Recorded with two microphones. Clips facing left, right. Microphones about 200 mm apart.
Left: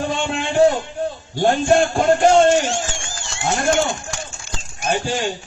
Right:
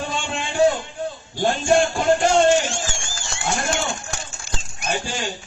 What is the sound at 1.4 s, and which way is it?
Speech, 55° left (ahead or behind).